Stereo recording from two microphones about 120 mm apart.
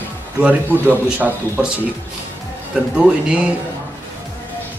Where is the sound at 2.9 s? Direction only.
10° right (ahead or behind).